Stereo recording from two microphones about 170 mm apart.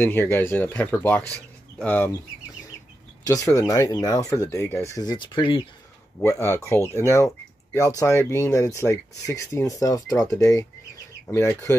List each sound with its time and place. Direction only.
0.0 s speech: 15° left (ahead or behind)
3.3 s speech: 20° left (ahead or behind)
6.2 s speech: 15° left (ahead or behind)